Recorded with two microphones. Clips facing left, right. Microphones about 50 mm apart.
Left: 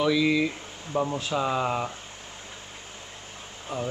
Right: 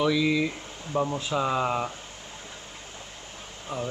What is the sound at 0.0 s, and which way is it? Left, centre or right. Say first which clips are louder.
Speech: left 1 dB; centre.